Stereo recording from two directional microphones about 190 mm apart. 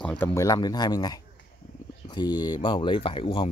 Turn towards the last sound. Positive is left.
turn(degrees=30)  # may be behind; listen again after turning